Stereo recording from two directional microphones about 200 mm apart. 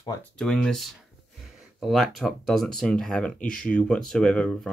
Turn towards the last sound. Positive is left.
turn(degrees=5)  # may be behind; listen again after turning